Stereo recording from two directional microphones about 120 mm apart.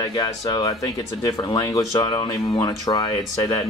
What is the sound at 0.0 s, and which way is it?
Speech, 35° left (ahead or behind).